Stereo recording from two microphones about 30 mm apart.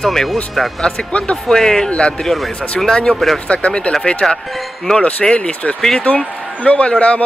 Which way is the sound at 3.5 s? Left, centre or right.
Left.